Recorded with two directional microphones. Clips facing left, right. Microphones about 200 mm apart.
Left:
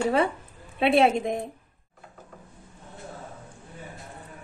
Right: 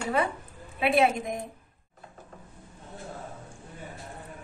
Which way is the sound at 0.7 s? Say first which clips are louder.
Left 3 dB; 30° left (ahead or behind).